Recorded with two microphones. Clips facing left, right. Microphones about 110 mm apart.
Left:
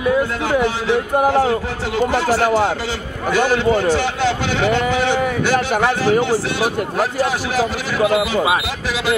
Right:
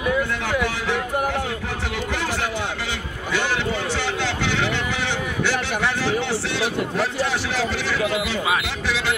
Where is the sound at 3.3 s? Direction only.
45° left (ahead or behind).